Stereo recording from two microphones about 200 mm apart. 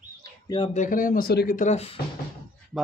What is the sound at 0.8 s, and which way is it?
Speech, 40° left (ahead or behind).